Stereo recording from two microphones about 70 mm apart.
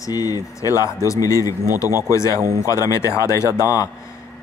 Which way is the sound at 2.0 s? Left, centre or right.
Left.